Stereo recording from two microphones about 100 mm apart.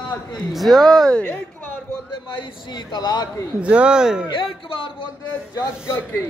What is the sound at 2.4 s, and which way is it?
Speech, 50° left (ahead or behind).